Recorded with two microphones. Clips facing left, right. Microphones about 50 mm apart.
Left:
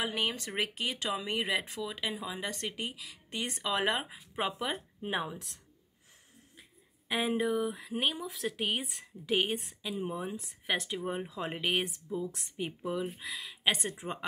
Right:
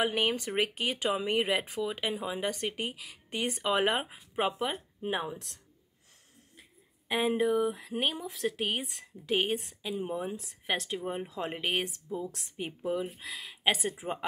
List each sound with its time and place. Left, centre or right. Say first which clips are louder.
0.0 s speech: right 4 dB; centre
7.1 s speech: right 3 dB; centre